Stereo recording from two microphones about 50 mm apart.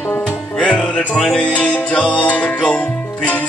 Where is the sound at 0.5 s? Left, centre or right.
Centre.